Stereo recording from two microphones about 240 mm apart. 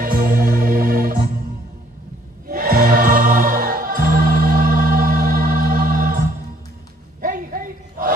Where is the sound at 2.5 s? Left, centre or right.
Right.